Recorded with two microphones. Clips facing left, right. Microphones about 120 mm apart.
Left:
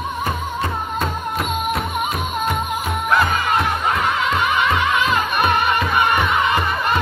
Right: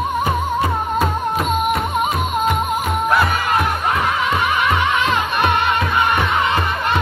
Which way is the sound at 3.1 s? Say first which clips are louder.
Left 1 dB; 5° right (ahead or behind).